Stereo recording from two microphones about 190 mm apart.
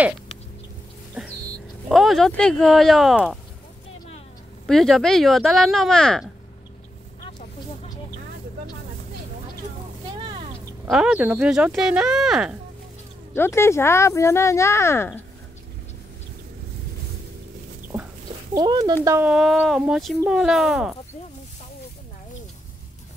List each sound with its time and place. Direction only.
1.2 s a sound: 5° right (ahead or behind)
1.9 s speech: centre (ahead or behind)
4.6 s speech: centre (ahead or behind)
10.1 s a sound: 25° right (ahead or behind)
10.9 s speech: 5° right (ahead or behind)
13.3 s speech: 15° left (ahead or behind)
18.5 s speech: 20° right (ahead or behind)
19.3 s speech: centre (ahead or behind)